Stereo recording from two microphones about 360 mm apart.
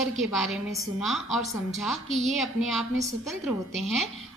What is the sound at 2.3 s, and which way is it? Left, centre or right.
A woman's voice, centre.